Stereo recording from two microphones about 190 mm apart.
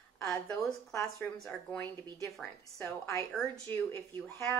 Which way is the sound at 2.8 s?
15° left (ahead or behind).